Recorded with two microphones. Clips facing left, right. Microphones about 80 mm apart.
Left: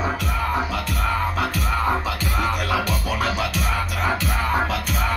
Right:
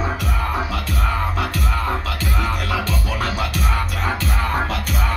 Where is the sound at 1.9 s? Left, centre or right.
Centre.